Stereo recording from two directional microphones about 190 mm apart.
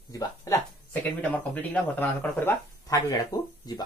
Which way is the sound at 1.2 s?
10° left (ahead or behind).